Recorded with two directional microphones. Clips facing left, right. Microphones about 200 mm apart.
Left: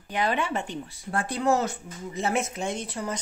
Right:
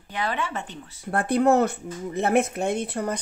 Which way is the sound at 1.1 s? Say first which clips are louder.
Right 5 dB; 60° right (ahead or behind).